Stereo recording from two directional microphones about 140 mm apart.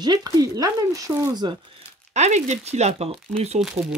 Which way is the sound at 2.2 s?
55° right (ahead or behind).